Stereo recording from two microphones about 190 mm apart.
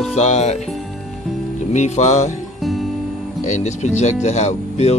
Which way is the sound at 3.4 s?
40° left (ahead or behind).